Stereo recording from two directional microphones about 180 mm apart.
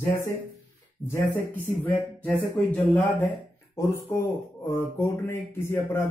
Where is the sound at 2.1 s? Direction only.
10° left (ahead or behind).